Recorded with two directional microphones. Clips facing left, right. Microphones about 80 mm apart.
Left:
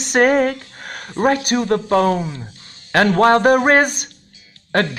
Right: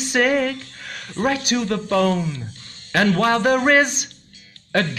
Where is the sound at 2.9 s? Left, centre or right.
Left.